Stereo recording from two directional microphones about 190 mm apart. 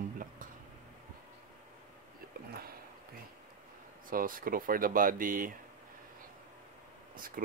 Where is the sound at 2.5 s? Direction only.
50° right (ahead or behind).